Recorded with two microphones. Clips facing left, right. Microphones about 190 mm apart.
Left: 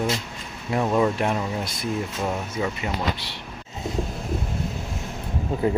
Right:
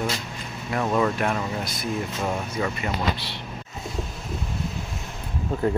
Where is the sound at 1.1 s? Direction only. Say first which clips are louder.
Left 1 dB; 25° left (ahead or behind).